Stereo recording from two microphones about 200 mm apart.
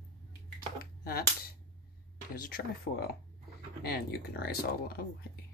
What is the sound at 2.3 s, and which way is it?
Speech, 45° left (ahead or behind).